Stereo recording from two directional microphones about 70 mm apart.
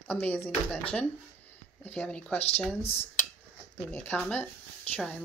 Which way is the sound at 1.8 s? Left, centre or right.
Centre.